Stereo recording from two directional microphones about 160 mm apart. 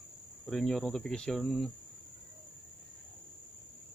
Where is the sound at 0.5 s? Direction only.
Centre (ahead or behind).